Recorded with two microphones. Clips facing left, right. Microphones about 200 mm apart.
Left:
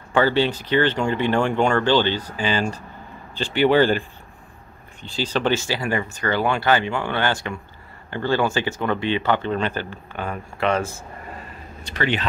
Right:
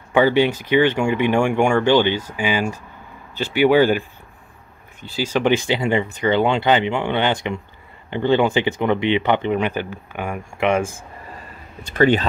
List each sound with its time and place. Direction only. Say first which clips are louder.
0.1 s speech: right 3 dB; 15° right (ahead or behind)
5.1 s speech: right 3 dB; 10° right (ahead or behind)
12.0 s speech: right 8 dB; 45° right (ahead or behind)